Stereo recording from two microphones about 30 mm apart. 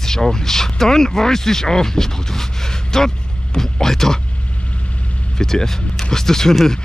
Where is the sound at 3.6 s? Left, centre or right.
Centre.